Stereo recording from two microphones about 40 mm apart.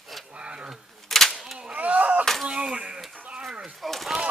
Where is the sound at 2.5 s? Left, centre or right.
Centre.